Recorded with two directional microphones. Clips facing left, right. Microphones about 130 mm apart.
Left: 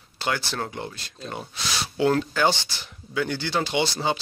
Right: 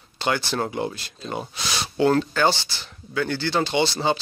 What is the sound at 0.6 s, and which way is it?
Speech, 10° right (ahead or behind).